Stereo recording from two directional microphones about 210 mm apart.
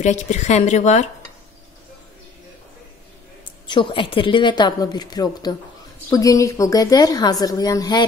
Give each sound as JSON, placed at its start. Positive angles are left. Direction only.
{"t": 0.0, "sound": "a woman's voice", "side_deg": 35}
{"t": 3.6, "sound": "a woman's voice", "side_deg": 20}